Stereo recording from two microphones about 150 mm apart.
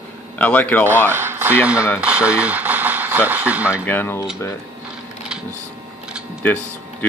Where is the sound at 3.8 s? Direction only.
15° left (ahead or behind).